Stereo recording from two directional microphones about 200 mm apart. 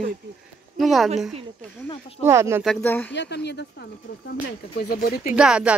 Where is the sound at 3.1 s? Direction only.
60° left (ahead or behind).